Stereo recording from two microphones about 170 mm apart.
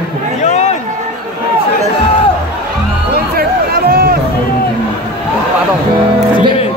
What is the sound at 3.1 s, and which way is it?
Music, 65° right (ahead or behind).